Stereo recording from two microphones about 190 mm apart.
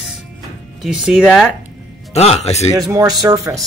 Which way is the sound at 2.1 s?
35° left (ahead or behind).